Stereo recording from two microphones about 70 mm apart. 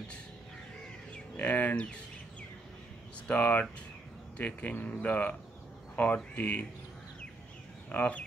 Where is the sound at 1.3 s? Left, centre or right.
Left.